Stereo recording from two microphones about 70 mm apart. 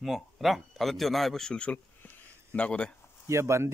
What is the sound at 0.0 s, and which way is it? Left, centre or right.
A man's voice, centre.